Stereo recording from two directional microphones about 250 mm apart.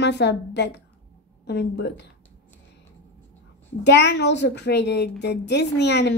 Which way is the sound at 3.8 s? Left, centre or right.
Left.